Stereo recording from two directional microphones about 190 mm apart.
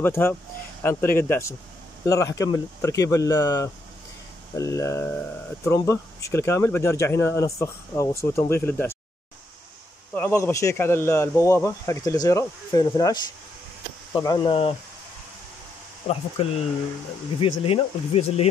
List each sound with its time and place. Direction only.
0.0 s speech: 10° left (ahead or behind)
10.1 s speech: 10° left (ahead or behind); by 14.8 s 30° left (ahead or behind)
16.4 s speech: 30° left (ahead or behind)